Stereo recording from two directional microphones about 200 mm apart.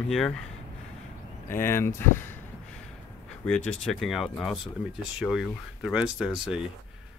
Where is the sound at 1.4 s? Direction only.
10° left (ahead or behind).